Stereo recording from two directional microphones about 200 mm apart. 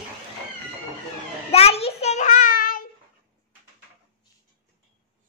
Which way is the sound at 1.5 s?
30° left (ahead or behind).